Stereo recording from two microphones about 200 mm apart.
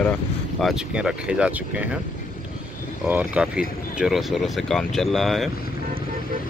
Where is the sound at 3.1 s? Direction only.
5° right (ahead or behind).